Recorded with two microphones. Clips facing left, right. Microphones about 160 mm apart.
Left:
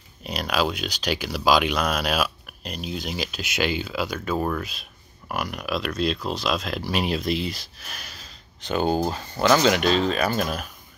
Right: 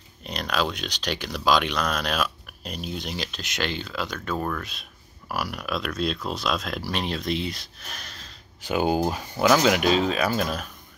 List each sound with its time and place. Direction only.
0.2 s speech: 5° left (ahead or behind)
8.5 s speech: 10° right (ahead or behind)